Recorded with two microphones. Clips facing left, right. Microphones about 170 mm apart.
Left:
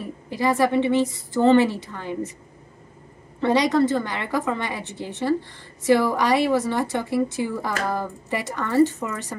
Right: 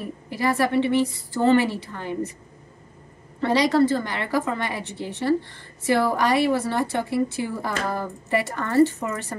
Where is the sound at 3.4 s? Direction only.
20° left (ahead or behind).